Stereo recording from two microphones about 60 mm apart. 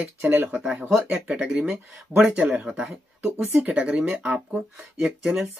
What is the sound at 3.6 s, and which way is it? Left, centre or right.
Speech, right.